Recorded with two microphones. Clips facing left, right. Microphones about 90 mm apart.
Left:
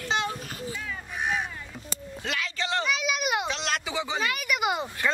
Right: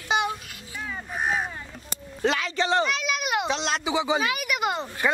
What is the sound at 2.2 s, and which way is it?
Speech, 30° right (ahead or behind).